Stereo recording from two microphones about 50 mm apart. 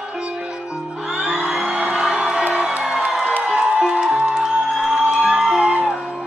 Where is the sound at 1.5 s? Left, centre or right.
Centre.